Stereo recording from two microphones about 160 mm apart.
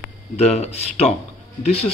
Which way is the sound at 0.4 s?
40° left (ahead or behind).